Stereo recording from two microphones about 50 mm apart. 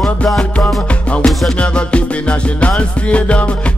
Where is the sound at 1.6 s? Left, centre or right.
Left.